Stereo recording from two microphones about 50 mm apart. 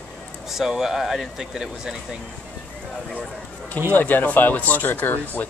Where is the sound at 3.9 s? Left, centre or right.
Left.